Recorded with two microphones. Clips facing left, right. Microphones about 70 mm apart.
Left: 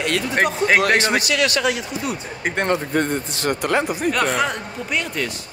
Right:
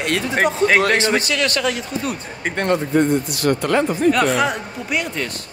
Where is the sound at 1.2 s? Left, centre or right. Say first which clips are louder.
Left 1 dB; right.